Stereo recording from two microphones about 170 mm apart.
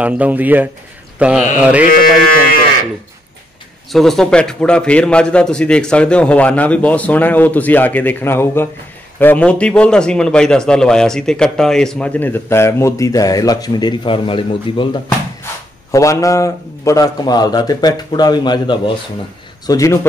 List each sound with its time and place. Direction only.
0.0 s speech: 10° right (ahead or behind)
3.9 s a man's voice: centre (ahead or behind); by 15.0 s 30° left (ahead or behind)
15.9 s a man's voice: 20° left (ahead or behind)